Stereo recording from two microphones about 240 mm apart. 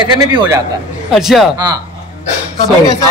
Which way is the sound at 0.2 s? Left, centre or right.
Centre.